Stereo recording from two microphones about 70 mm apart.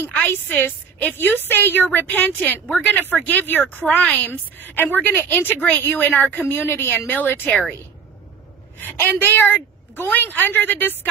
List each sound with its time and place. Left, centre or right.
0.3 s a woman's voice: left
8.7 s a woman's voice: left